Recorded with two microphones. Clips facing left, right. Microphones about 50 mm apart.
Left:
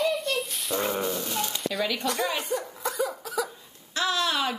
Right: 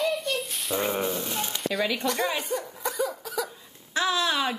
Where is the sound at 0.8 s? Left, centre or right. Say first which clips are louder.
Right 1 dB; centre.